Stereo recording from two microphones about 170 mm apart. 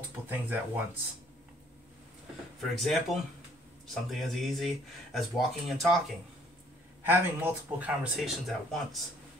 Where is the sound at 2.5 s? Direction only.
Centre (ahead or behind).